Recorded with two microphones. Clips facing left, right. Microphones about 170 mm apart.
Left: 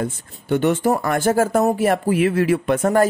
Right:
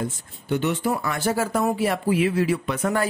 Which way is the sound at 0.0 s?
50° left (ahead or behind).